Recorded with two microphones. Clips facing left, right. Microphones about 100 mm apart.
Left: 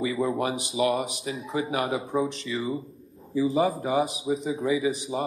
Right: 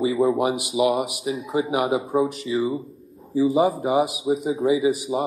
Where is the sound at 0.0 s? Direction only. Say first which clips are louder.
Right 6 dB; 20° right (ahead or behind).